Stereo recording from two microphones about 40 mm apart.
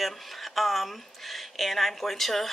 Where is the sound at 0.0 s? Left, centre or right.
Centre.